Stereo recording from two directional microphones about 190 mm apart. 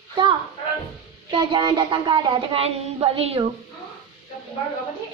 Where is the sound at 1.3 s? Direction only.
25° right (ahead or behind).